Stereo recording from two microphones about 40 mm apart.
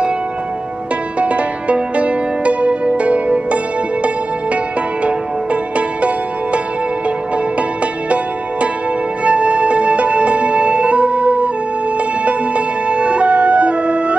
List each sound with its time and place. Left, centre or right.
1.2 s music: right
5.0 s music: right
9.2 s music: right